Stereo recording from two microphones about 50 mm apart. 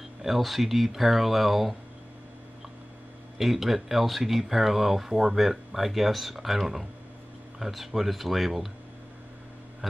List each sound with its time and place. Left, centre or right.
0.2 s speech: centre
3.3 s speech: centre